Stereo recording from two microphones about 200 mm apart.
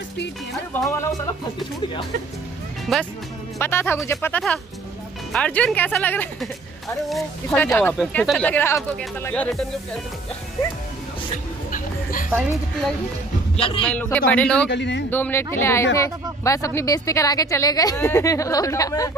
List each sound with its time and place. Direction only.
0.8 s speech: 15° left (ahead or behind)
2.9 s speech: centre (ahead or behind)
3.5 s speech: 10° left (ahead or behind)
11.7 s a sound: 45° left (ahead or behind)
13.8 s speech: 10° left (ahead or behind)
14.7 s speech: 60° left (ahead or behind)
15.0 s speech: 10° left (ahead or behind)